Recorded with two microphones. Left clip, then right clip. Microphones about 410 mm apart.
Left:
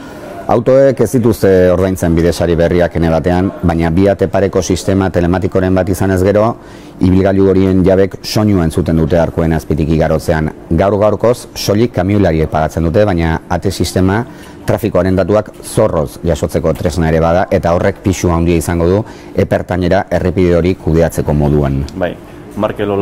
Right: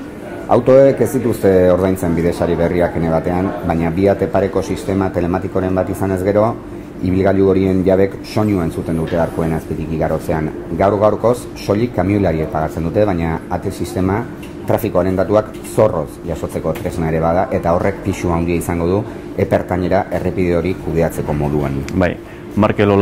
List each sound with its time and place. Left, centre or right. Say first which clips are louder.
0.5 s speech: left 1 dB; left
21.4 s speech: left 6 dB; left
22.6 s speech: right 2 dB; centre